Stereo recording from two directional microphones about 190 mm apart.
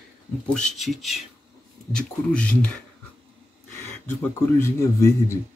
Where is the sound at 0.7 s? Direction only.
Centre (ahead or behind).